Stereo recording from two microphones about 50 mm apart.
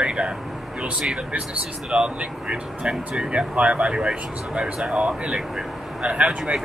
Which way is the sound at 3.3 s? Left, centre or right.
Right.